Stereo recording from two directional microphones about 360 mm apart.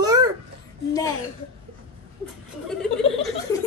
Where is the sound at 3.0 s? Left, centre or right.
Centre.